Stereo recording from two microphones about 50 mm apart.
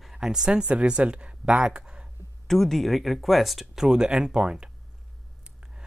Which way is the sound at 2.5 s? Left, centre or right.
Centre.